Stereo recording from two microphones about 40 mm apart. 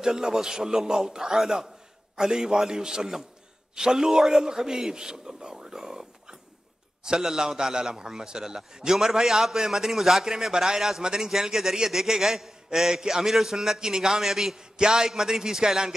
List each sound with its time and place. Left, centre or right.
0.0 s a man's voice: centre